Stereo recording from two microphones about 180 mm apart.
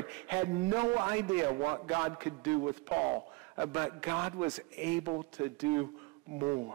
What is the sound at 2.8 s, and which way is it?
A man's voice, 10° right (ahead or behind).